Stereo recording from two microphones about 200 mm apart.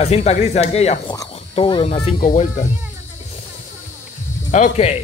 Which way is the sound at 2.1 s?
40° left (ahead or behind).